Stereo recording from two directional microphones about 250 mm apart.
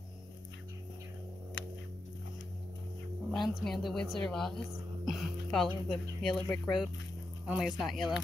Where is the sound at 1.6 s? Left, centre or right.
Left.